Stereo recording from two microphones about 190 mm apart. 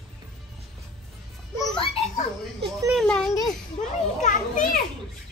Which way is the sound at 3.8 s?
35° left (ahead or behind).